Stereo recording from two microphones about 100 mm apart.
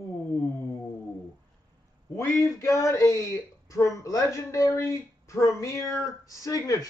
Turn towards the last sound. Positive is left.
turn(degrees=35)  # may be behind; listen again after turning